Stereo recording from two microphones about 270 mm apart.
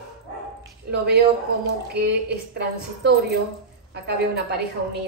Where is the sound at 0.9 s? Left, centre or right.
Right.